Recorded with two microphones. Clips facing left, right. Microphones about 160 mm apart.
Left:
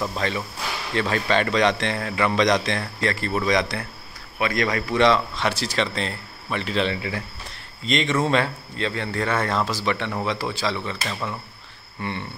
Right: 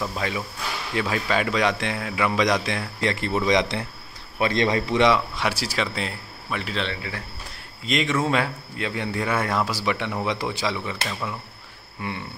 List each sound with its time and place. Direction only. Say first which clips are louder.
0.1 s a man's voice: left 2 dB; 10° right (ahead or behind)
3.0 s speech: right 2 dB; 20° right (ahead or behind)